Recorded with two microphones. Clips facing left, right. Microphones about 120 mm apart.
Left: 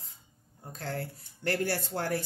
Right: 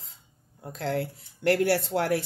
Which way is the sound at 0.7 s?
90° right.